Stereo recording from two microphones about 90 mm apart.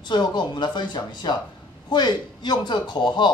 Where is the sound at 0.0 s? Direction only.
55° left (ahead or behind).